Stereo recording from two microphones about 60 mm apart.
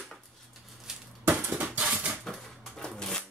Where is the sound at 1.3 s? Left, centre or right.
Right.